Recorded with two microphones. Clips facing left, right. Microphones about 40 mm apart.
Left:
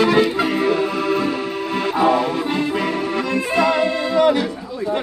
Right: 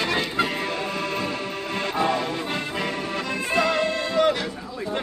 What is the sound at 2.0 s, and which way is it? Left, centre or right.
Music, centre.